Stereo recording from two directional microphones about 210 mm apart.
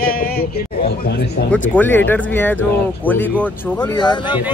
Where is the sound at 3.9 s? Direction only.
20° left (ahead or behind).